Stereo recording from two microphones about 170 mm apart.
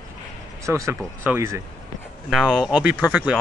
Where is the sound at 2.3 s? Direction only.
5° right (ahead or behind).